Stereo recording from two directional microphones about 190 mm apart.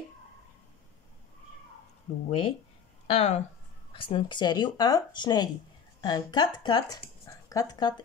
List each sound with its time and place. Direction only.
2.1 s speech: 30° left (ahead or behind)